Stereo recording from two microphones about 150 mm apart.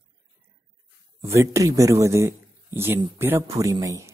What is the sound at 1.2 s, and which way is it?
Speech, 20° right (ahead or behind).